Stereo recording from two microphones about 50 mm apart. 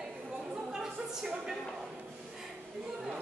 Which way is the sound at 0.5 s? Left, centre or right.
Centre.